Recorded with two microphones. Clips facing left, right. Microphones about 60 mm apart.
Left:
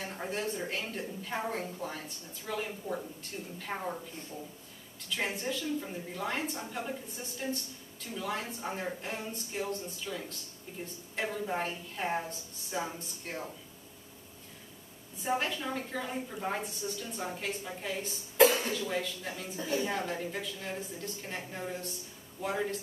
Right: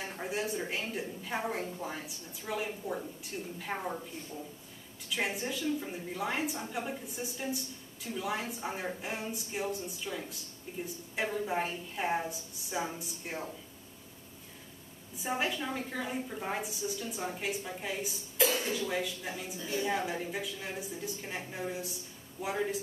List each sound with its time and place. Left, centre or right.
0.2 s a woman's voice: centre
5.1 s a woman's voice: centre
15.1 s a woman's voice: centre
18.4 s speech: left
18.7 s a woman's voice: centre